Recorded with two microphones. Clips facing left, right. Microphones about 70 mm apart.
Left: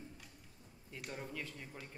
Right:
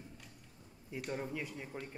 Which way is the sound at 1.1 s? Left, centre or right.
Centre.